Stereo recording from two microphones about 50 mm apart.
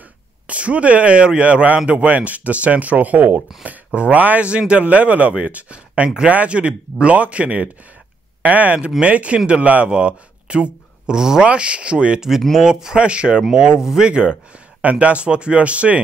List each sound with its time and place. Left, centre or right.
0.5 s a man's voice: right
11.4 s a man's voice: right
12.2 s speech: centre
12.9 s a man's voice: right